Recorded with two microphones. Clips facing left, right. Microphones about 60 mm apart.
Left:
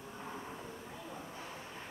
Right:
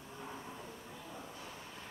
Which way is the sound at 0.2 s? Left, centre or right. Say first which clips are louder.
Left 1 dB; centre.